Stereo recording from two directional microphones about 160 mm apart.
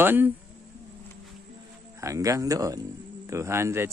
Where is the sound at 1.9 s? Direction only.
20° right (ahead or behind).